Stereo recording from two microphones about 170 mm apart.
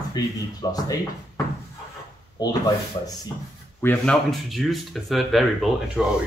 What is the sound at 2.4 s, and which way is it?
Speech, 25° left (ahead or behind).